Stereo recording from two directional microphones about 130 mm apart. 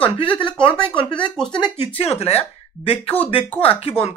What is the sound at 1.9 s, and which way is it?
Speech, 50° left (ahead or behind).